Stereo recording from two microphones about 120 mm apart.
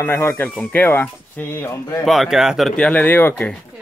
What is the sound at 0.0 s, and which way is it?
Speech, 15° left (ahead or behind).